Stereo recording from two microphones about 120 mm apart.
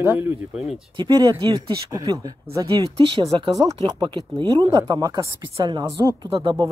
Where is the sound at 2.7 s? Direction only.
45° right (ahead or behind).